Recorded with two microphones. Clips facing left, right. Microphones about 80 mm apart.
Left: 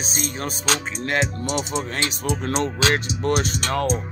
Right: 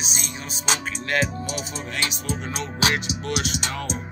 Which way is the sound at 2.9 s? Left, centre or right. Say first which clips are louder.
Left 5 dB; left.